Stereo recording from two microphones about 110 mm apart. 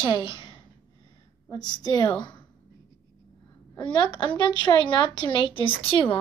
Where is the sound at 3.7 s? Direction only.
40° left (ahead or behind).